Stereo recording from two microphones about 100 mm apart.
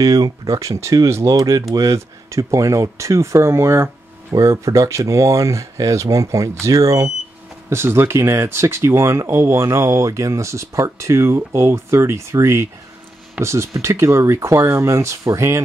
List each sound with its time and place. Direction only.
0.0 s speech: 35° right (ahead or behind)